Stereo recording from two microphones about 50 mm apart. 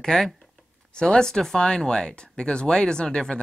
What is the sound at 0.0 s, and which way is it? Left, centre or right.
Speech, centre.